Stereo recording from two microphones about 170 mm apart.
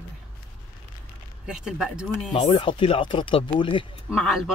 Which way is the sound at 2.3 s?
30° left (ahead or behind).